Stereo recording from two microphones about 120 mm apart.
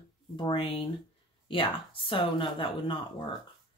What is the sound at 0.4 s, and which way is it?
Speech, 45° left (ahead or behind).